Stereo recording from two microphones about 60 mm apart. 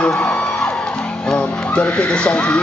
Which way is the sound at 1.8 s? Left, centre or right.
Left.